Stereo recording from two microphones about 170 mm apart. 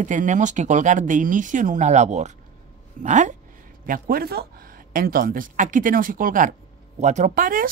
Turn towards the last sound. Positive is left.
turn(degrees=-55)  # may be behind; listen again after turning